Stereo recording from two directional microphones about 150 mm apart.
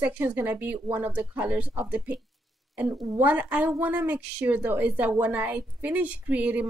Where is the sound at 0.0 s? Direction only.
10° right (ahead or behind).